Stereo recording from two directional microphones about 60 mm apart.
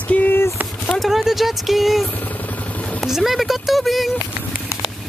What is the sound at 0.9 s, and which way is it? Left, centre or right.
Speech, centre.